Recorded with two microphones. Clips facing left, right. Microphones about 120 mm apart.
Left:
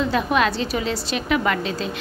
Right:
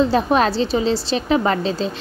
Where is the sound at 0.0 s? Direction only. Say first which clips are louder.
Right 4 dB; 35° right (ahead or behind).